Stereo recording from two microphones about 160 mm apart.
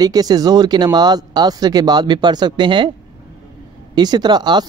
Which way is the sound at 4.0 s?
25° right (ahead or behind).